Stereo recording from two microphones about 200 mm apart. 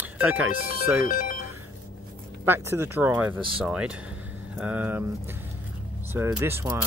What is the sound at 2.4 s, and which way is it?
Speech, 10° right (ahead or behind).